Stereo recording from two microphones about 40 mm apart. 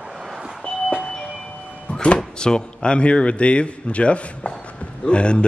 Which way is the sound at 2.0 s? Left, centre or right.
Left.